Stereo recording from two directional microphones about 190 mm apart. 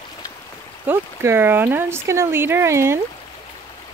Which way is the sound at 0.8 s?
10° right (ahead or behind).